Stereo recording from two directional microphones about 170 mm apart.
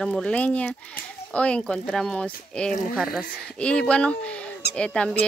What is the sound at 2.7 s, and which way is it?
Speech, 50° left (ahead or behind).